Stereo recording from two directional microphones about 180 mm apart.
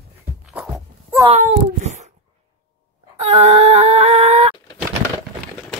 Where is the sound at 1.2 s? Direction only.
35° right (ahead or behind).